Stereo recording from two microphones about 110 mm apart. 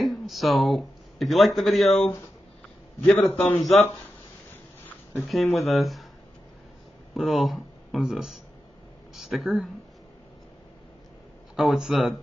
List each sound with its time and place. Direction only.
0.0 s a man's voice: centre (ahead or behind)
3.1 s a man's voice: 15° left (ahead or behind)
5.2 s speech: centre (ahead or behind)
7.2 s speech: centre (ahead or behind)
11.5 s speech: 5° right (ahead or behind)